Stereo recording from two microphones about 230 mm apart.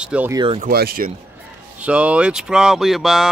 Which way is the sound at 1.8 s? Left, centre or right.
Centre.